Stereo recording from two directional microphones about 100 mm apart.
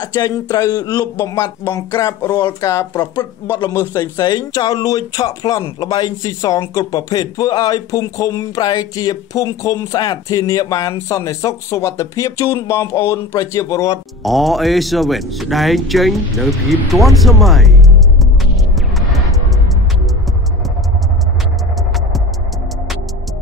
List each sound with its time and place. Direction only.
0.0 s speech: 40° left (ahead or behind)
3.9 s speech: 40° left (ahead or behind)
14.2 s speech: centre (ahead or behind)